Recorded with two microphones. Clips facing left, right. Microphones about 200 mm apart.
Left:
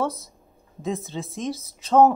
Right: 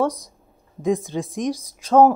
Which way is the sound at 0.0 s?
15° right (ahead or behind).